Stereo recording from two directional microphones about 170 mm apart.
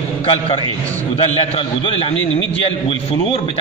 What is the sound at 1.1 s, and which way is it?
A man's voice, 40° left (ahead or behind).